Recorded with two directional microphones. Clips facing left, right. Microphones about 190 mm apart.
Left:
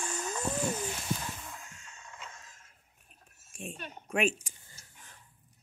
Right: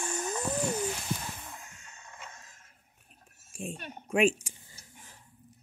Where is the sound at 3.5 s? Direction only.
25° right (ahead or behind).